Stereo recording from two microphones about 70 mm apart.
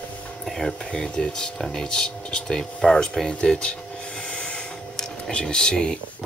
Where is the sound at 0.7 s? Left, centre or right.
Centre.